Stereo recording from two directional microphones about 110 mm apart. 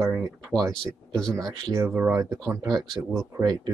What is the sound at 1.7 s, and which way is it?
Speech, 25° right (ahead or behind).